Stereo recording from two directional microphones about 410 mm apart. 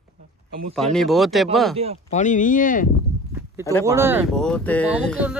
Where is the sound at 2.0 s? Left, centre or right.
Centre.